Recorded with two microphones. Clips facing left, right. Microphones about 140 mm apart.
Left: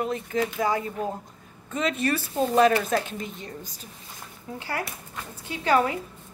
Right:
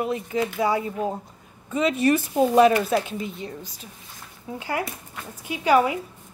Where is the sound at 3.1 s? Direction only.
40° left (ahead or behind).